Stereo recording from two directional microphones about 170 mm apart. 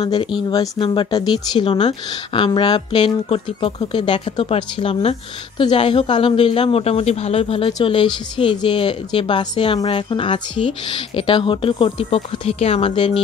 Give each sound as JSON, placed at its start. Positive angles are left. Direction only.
{"t": 0.0, "sound": "speech", "side_deg": 25}